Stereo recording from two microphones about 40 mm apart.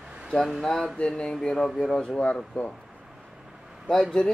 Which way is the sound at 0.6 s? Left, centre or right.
Centre.